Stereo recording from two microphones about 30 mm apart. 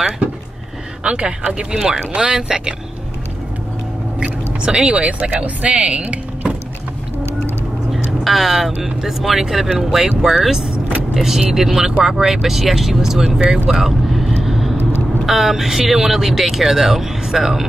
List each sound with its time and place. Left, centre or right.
1.0 s speech: right
4.2 s a sound: right
4.8 s speech: right
7.9 s vehicle: centre
8.5 s speech: centre
13.7 s vehicle: centre
15.2 s speech: centre